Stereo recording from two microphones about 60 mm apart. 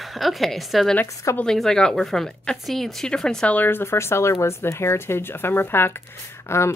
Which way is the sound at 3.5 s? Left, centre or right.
Left.